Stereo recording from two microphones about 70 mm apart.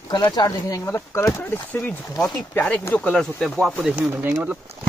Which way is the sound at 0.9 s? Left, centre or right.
Left.